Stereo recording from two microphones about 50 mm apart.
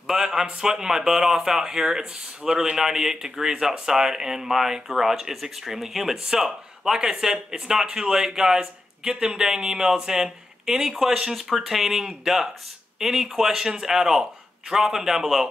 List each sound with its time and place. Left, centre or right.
0.0 s a man's voice: centre